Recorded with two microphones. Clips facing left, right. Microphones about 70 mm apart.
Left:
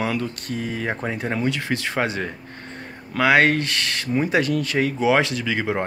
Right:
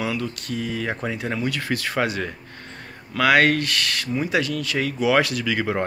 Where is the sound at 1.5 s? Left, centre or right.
Left.